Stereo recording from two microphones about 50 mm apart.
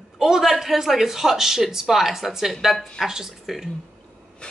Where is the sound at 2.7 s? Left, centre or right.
Centre.